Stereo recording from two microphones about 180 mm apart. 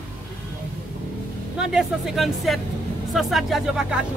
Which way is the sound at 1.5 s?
5° right (ahead or behind).